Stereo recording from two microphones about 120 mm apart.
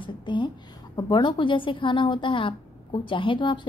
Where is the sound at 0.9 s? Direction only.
35° left (ahead or behind).